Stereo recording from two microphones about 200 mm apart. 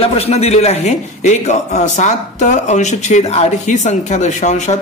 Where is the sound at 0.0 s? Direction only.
30° left (ahead or behind).